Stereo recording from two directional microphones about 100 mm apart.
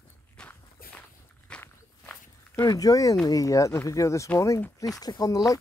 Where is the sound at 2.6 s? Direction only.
35° left (ahead or behind).